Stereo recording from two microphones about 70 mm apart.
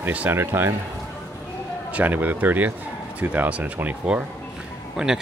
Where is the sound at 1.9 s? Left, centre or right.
Right.